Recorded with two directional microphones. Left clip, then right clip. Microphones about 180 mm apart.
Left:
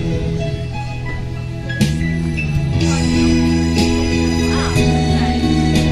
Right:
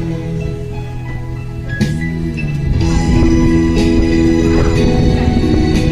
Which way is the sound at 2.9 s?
45° left (ahead or behind).